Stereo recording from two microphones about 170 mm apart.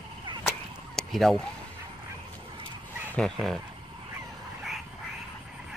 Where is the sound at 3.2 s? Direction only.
5° left (ahead or behind).